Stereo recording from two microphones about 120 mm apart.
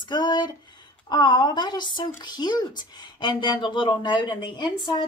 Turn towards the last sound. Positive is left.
turn(degrees=35)  # may be behind; listen again after turning